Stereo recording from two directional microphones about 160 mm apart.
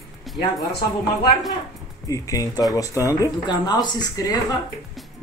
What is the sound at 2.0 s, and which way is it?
Speech, 20° left (ahead or behind).